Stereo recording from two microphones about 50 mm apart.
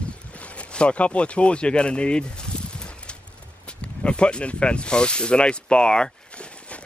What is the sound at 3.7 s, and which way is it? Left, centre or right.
Speech, left.